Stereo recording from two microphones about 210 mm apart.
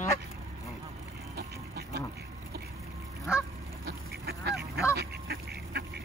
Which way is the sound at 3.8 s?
50° right (ahead or behind).